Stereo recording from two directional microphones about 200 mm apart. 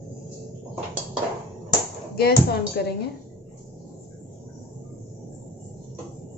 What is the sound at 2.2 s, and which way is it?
Speech, 50° left (ahead or behind).